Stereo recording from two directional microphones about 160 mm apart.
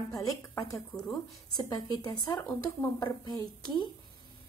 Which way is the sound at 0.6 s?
20° left (ahead or behind).